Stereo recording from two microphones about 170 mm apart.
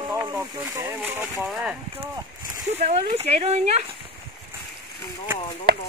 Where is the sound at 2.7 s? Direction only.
40° right (ahead or behind).